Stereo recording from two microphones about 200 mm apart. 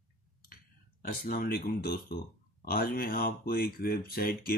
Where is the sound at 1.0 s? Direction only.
45° left (ahead or behind).